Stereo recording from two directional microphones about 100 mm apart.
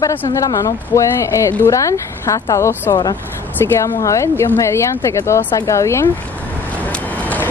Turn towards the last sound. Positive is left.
turn(degrees=15)  # may be behind; listen again after turning